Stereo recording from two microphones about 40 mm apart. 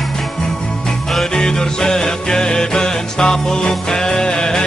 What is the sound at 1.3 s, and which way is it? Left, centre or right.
Music, centre.